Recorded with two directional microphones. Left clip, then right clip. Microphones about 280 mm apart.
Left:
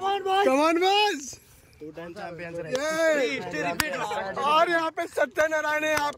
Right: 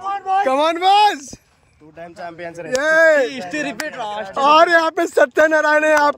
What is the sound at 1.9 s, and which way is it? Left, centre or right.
Speech, right.